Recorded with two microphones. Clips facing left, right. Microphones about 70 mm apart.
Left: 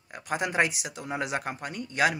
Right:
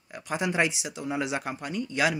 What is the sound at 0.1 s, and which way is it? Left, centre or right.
Speech, left.